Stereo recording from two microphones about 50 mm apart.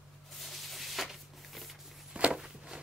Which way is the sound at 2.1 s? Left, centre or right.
Right.